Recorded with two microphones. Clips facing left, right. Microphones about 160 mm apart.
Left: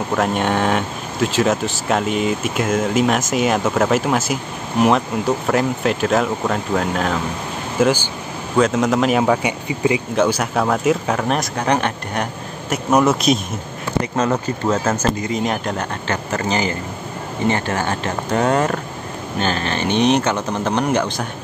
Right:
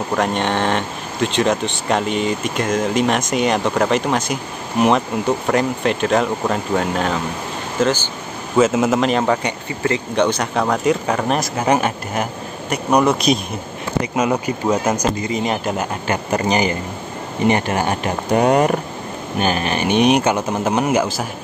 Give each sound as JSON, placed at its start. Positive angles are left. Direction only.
{"t": 0.1, "sound": "speech", "side_deg": 5}
{"t": 7.8, "sound": "speech", "side_deg": 10}
{"t": 8.5, "sound": "speech", "side_deg": -5}
{"t": 14.1, "sound": "speech", "side_deg": -10}
{"t": 15.2, "sound": "speech", "side_deg": 0}